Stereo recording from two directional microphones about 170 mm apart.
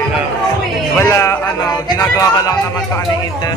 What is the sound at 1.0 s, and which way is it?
A man's voice, 15° left (ahead or behind).